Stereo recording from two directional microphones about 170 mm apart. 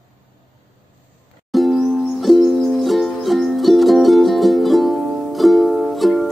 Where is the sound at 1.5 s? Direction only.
Centre (ahead or behind).